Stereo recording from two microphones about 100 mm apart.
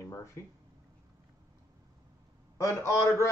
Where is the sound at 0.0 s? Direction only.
30° left (ahead or behind).